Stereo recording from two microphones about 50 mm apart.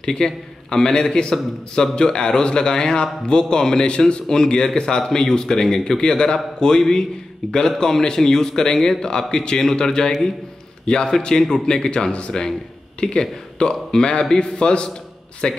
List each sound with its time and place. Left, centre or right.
0.0 s speech: centre